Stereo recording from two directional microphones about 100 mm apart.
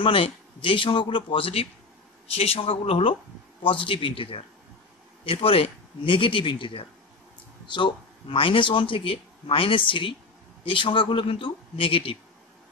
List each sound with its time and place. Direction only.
0.0 s speech: 60° left (ahead or behind)